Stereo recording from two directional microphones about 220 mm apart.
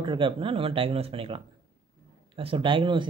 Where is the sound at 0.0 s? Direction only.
20° right (ahead or behind).